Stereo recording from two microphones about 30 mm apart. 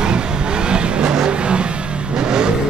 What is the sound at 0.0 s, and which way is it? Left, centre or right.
Vehicle, right.